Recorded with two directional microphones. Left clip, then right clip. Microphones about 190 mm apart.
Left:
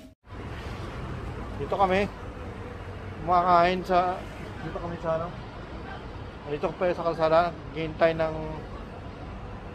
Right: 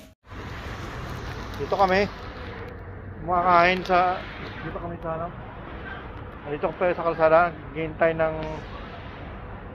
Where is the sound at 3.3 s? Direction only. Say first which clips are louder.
Right 2 dB; 5° right (ahead or behind).